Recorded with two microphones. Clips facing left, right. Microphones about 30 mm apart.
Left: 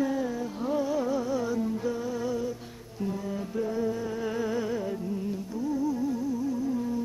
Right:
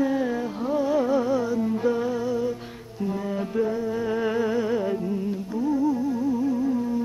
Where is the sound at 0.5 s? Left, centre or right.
Centre.